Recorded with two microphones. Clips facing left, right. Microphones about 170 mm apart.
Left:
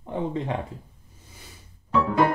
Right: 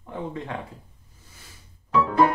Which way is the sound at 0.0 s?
20° left (ahead or behind).